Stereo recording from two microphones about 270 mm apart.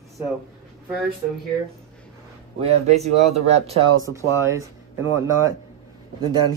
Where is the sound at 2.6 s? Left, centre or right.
Right.